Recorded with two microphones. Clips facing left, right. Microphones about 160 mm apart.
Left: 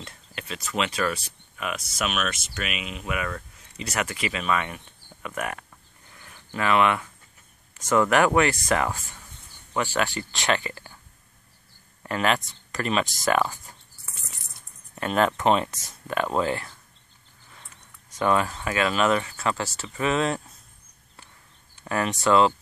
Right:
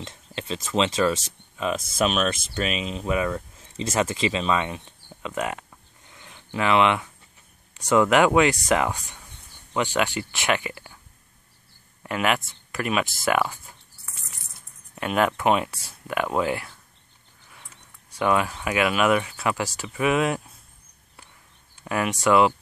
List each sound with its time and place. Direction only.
0.0 s a sound: 25° right (ahead or behind)
0.7 s speech: 25° right (ahead or behind)
12.0 s speech: 10° right (ahead or behind)
15.0 s speech: 10° right (ahead or behind)
18.1 s speech: 10° right (ahead or behind)
21.8 s speech: 10° right (ahead or behind)